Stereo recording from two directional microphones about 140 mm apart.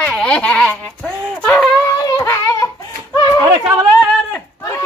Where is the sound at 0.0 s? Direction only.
5° left (ahead or behind).